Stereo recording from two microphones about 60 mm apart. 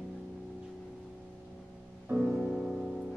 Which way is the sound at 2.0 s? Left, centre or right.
Centre.